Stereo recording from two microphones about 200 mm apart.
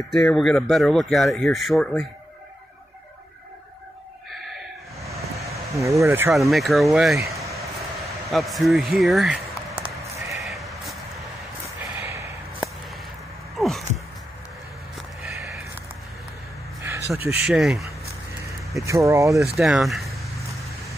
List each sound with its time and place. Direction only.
0.1 s speech: centre (ahead or behind)
5.8 s speech: 15° right (ahead or behind)
6.5 s speech: centre (ahead or behind)
8.3 s speech: centre (ahead or behind)
10.3 s bleat: centre (ahead or behind)
11.1 s a sound: 15° right (ahead or behind)
13.6 s a sound: centre (ahead or behind)
16.8 s speech: 10° right (ahead or behind)
18.9 s speech: 15° right (ahead or behind)
19.4 s speech: centre (ahead or behind)